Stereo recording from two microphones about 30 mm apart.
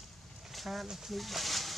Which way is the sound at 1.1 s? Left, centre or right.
Centre.